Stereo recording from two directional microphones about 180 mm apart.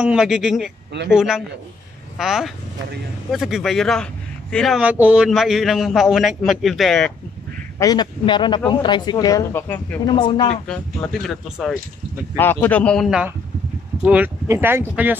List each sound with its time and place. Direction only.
0.0 s a man's voice: 5° right (ahead or behind)
7.8 s speech: 20° left (ahead or behind)
10.0 s speech: 25° left (ahead or behind)
10.7 s a man's voice: 5° left (ahead or behind)